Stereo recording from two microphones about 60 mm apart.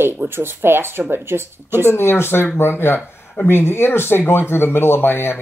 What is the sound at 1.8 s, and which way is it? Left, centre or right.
Speech, left.